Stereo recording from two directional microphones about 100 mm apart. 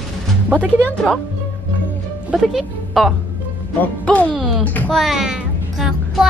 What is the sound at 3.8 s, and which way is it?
Music, 15° left (ahead or behind).